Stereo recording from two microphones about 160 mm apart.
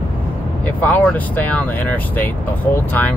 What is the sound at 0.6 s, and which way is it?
Speech, 10° left (ahead or behind).